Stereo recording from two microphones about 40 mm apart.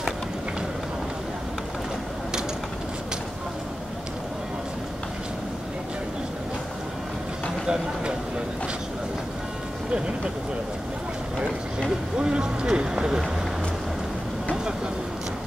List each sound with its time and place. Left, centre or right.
7.6 s speech: centre
12.2 s speech: right